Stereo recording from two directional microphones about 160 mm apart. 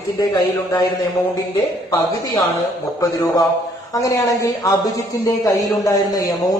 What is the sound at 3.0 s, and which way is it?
Speech, 25° left (ahead or behind).